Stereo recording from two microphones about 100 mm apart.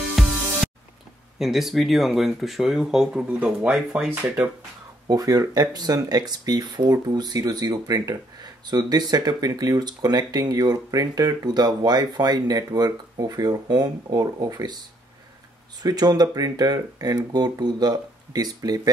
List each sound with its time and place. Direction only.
0.2 s music: centre (ahead or behind)
1.4 s speech: centre (ahead or behind)
5.0 s speech: 40° right (ahead or behind)
15.8 s speech: 40° right (ahead or behind)